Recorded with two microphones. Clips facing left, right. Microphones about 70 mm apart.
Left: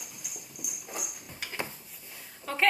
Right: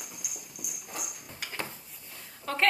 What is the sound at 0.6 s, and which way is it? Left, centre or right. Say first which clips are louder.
Dog: left 1 dB; centre.